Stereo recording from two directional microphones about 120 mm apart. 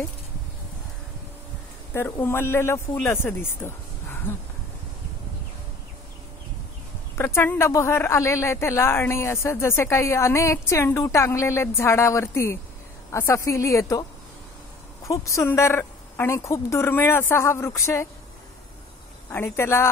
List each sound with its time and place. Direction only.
2.0 s speech: 20° left (ahead or behind)
7.2 s speech: 20° left (ahead or behind)
15.0 s speech: 25° left (ahead or behind)
19.3 s speech: 20° left (ahead or behind)